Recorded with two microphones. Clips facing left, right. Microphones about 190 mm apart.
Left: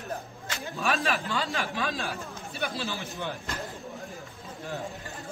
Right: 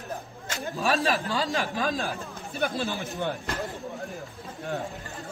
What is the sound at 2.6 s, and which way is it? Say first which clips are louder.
Speech: right 5 dB; 55° right (ahead or behind).